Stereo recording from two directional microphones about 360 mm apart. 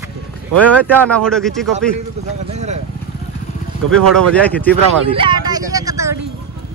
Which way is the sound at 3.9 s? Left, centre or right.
Centre.